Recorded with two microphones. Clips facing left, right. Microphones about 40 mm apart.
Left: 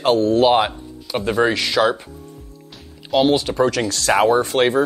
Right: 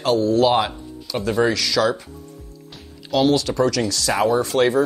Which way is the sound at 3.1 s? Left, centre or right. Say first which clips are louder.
Left 1 dB; left.